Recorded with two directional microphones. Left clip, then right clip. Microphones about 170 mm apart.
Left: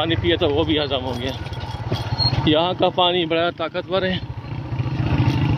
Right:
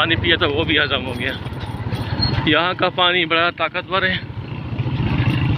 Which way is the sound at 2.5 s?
20° left (ahead or behind).